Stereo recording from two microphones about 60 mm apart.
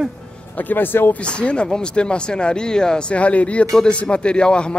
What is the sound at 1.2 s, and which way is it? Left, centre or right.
Speech, centre.